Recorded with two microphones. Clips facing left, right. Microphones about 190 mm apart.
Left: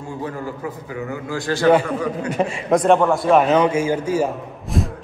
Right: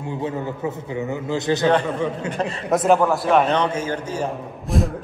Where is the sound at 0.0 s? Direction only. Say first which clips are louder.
Right 2 dB; 20° right (ahead or behind).